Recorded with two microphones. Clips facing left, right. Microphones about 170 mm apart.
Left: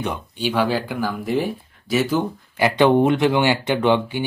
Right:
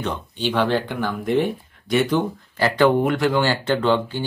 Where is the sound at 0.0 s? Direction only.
10° left (ahead or behind).